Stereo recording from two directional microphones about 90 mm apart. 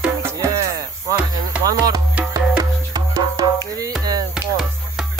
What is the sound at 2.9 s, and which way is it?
Music, 45° right (ahead or behind).